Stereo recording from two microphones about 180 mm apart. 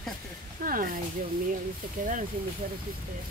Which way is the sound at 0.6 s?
55° right (ahead or behind).